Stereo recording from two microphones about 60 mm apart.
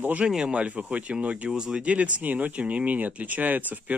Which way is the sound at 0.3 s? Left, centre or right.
Centre.